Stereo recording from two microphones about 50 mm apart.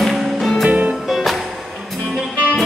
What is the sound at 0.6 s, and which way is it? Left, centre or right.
Music, right.